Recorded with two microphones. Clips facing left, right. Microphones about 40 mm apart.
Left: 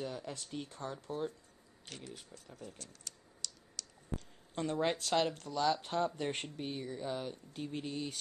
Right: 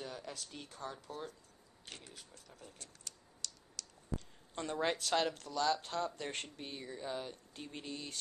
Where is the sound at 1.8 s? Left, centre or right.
Centre.